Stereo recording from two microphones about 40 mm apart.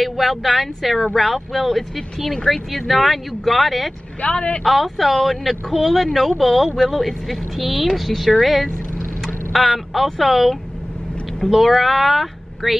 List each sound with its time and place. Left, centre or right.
0.0 s speech: centre
4.2 s speech: left
4.6 s speech: centre